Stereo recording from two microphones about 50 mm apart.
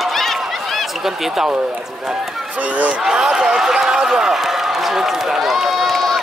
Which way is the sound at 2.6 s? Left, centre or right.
Right.